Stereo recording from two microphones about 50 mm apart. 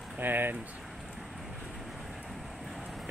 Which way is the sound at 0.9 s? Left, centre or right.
Centre.